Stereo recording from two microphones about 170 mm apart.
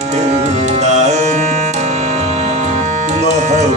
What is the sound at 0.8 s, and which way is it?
Music, 45° right (ahead or behind).